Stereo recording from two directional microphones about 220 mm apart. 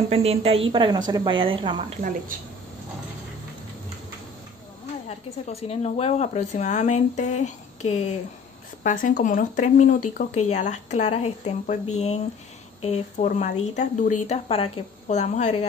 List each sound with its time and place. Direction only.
0.1 s a woman's voice: 25° right (ahead or behind)
5.0 s speech: 30° left (ahead or behind)